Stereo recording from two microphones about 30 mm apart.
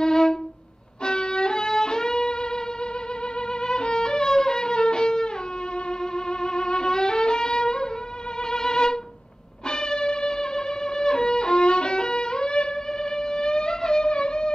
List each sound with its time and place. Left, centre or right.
0.0 s music: left
5.9 s violin: left
9.7 s music: left